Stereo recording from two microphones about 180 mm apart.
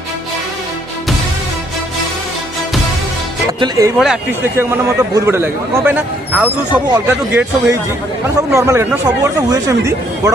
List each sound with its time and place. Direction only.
3.5 s speech: 25° right (ahead or behind)
4.0 s a man's voice: 5° right (ahead or behind)
8.5 s a man's voice: 15° right (ahead or behind)